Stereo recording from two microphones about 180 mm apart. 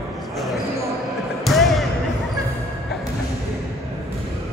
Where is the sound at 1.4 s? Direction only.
Centre (ahead or behind).